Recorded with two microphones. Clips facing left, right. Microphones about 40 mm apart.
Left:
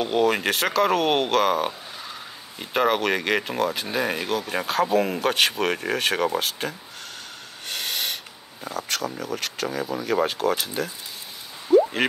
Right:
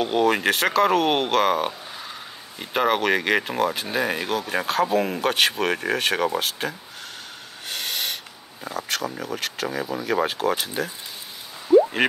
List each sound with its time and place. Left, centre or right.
0.0 s speech: centre
7.6 s snort: centre
8.6 s speech: centre
11.7 s a sound: centre